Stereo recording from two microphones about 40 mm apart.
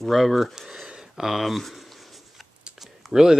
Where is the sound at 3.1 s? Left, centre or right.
Centre.